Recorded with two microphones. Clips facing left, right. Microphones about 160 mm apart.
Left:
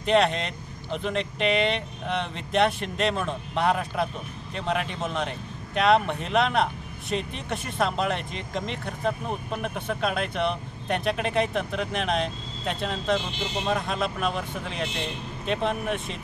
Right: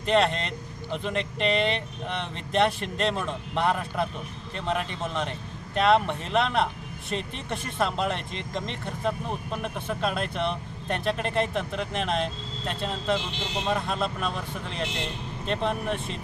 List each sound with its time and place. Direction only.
0.0 s speech: centre (ahead or behind)